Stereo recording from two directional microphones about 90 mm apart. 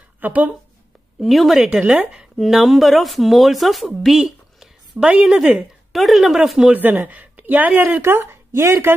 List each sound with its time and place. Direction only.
0.2 s speech: 20° right (ahead or behind)
1.2 s speech: centre (ahead or behind)
4.9 s speech: 15° right (ahead or behind)
6.7 s speech: 20° right (ahead or behind)